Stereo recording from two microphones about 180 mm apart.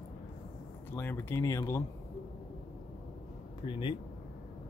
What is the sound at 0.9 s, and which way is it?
Speech, 10° left (ahead or behind).